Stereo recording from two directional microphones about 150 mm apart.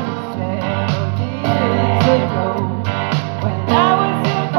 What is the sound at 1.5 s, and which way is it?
Music, 40° right (ahead or behind).